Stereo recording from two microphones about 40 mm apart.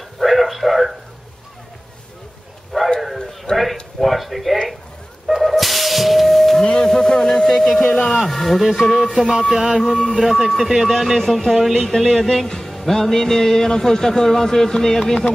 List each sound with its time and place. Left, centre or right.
0.2 s a sound: centre
3.5 s a sound: centre
4.0 s speech: centre
5.4 s music: centre
6.6 s music: centre
7.9 s speech: centre
8.2 s speech: centre